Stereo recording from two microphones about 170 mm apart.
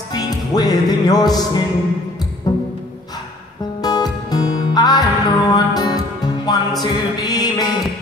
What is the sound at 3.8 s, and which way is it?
Music, 25° left (ahead or behind).